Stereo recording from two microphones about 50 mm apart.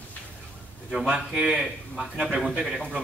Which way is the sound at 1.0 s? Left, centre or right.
Centre.